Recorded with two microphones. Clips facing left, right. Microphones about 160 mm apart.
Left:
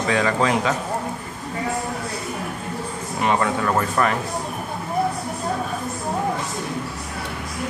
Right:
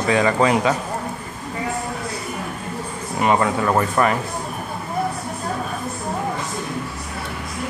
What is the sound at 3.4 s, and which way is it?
Speech, 25° right (ahead or behind).